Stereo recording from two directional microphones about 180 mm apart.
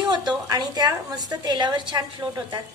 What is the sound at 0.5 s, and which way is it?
A woman's voice, 20° right (ahead or behind).